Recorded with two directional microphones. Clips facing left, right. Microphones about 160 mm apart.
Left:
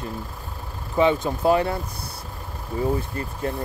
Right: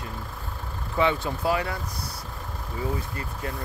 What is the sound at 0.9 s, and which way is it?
Speech, 20° left (ahead or behind).